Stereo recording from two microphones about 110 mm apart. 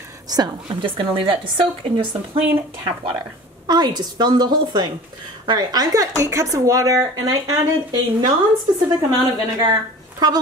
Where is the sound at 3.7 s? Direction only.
40° right (ahead or behind).